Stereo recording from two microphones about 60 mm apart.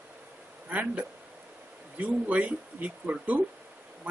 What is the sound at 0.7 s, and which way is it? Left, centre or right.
Speech, right.